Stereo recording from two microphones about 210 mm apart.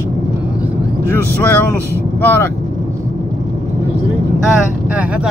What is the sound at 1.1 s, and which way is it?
Speech, 10° left (ahead or behind).